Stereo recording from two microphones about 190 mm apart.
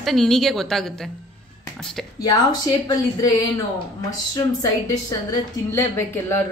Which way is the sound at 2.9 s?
20° left (ahead or behind).